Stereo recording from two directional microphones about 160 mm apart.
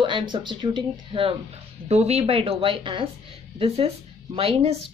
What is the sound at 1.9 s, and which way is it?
A woman's voice, 40° right (ahead or behind).